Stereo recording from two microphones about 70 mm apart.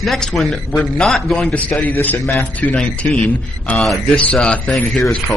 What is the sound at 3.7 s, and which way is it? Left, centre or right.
Speech, centre.